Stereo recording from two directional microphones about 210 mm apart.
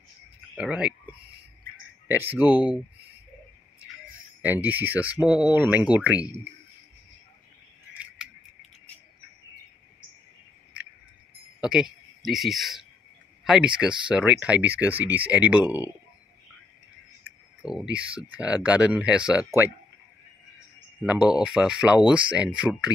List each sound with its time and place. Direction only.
0.6 s speech: 5° right (ahead or behind)
2.0 s speech: 10° right (ahead or behind)
2.4 s speech: 20° left (ahead or behind)
4.4 s speech: 10° right (ahead or behind)
7.9 s scissors: 5° right (ahead or behind)
11.6 s speech: 5° right (ahead or behind)
17.6 s speech: centre (ahead or behind)
21.0 s speech: 5° right (ahead or behind)